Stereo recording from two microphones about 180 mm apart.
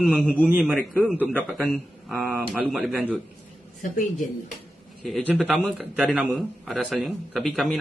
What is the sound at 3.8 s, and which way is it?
Speech, 45° left (ahead or behind).